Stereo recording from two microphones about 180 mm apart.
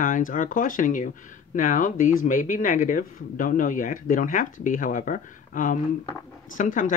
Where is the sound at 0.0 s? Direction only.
45° left (ahead or behind).